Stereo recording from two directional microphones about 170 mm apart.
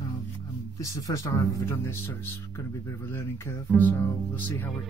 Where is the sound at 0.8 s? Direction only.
20° left (ahead or behind).